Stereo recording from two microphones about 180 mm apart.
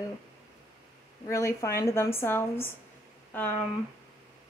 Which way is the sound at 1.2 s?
15° left (ahead or behind).